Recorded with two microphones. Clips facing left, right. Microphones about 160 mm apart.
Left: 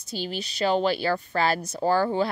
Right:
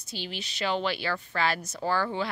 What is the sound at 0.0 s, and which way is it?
A woman's voice, 40° left (ahead or behind).